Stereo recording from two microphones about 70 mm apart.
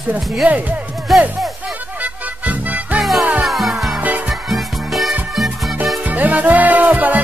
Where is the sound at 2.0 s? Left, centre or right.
Right.